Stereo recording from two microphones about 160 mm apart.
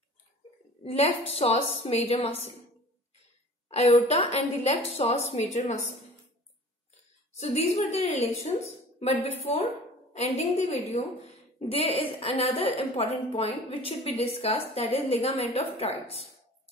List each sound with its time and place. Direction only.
0.8 s a woman's voice: 40° left (ahead or behind)
3.7 s a woman's voice: 40° left (ahead or behind)
7.3 s a woman's voice: 45° left (ahead or behind)